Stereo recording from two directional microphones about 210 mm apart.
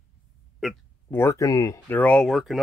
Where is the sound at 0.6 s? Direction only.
Centre (ahead or behind).